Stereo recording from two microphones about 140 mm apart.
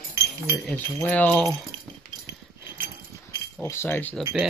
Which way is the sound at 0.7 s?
10° left (ahead or behind).